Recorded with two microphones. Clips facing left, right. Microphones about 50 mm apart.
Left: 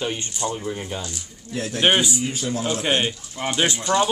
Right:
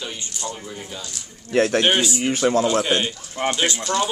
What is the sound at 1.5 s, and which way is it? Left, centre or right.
Speech, right.